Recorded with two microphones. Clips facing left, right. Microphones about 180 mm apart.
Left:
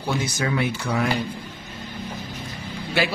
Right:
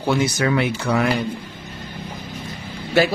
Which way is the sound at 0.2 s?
70° right (ahead or behind).